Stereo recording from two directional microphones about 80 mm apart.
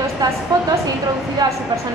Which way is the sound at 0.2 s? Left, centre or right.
Right.